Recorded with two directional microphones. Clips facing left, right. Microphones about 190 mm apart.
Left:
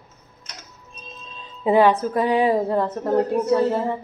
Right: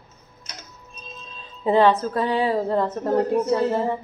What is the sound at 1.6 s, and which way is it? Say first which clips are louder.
A woman's voice: left 1 dB; 15° left (ahead or behind).